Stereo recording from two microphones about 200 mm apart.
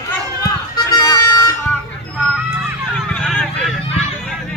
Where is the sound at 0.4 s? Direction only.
20° left (ahead or behind).